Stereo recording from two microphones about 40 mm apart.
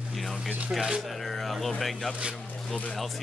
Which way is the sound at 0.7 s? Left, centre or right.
Centre.